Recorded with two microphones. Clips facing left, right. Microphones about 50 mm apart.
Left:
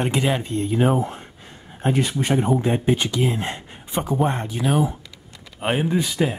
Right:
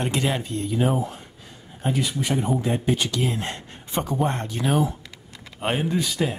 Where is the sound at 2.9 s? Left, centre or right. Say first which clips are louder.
Left 3 dB; left.